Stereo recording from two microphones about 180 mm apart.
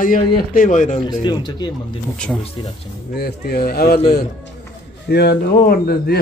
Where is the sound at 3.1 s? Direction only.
60° left (ahead or behind).